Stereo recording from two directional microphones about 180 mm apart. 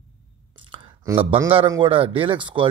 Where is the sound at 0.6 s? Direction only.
30° right (ahead or behind).